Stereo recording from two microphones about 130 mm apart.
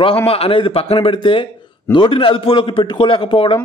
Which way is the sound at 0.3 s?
45° left (ahead or behind).